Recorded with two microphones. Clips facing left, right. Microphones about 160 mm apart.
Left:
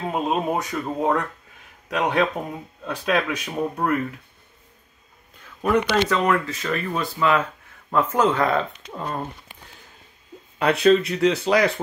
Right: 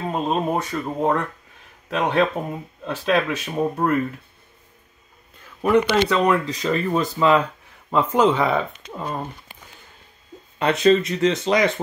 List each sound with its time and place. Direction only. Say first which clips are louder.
0.0 s a sound: right 1 dB; 5° left (ahead or behind)
0.7 s speech: right 1 dB; centre (ahead or behind)
5.9 s speech: right 2 dB; 15° right (ahead or behind)
10.6 s speech: even; centre (ahead or behind)